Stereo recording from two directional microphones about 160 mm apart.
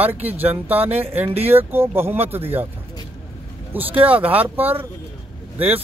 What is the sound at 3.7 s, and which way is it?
Speech, 10° right (ahead or behind).